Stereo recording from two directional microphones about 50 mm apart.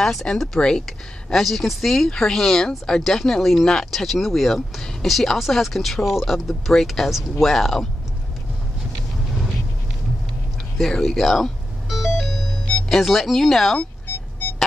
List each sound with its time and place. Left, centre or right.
0.0 s speech: centre
0.8 s speech: centre
10.8 s music: centre
12.9 s speech: centre